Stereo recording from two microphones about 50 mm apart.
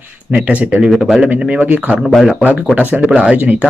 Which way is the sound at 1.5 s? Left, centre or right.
Right.